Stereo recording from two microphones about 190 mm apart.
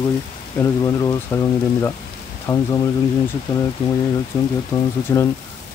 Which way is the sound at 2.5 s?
15° left (ahead or behind).